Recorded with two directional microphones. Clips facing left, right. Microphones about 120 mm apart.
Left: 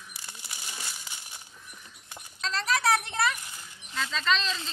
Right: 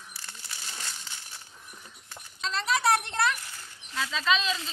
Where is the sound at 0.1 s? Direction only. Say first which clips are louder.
Even; 15° left (ahead or behind).